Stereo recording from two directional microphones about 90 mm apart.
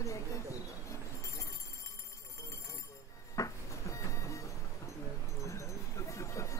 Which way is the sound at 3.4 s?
35° left (ahead or behind).